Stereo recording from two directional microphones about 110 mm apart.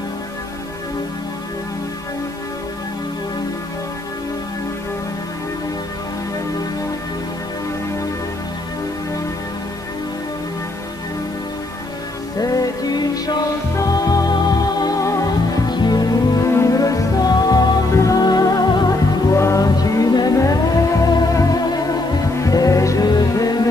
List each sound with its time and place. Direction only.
12.4 s music: 35° left (ahead or behind)